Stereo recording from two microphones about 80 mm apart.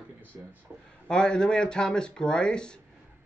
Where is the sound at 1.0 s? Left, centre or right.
Centre.